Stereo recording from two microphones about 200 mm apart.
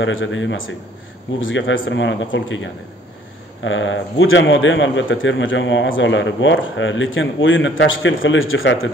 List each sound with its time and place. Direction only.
0.0 s a man's voice: 70° left (ahead or behind)